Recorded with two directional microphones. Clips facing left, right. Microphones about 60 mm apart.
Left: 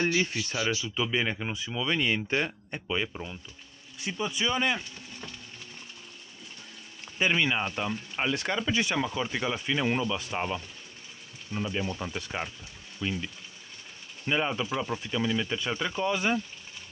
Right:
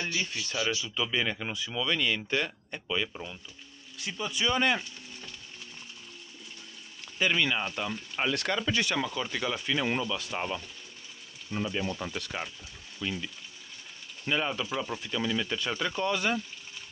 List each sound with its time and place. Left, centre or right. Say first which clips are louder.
0.0 s speech: left 6 dB; left; by 4.7 s centre
7.2 s speech: left 1 dB; centre
14.3 s speech: left 2 dB; centre